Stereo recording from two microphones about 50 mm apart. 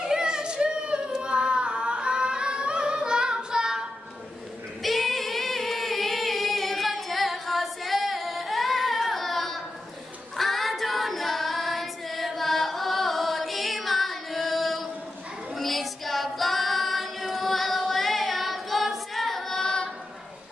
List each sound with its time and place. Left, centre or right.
0.0 s singing: centre
4.8 s singing: centre
10.3 s female singing: centre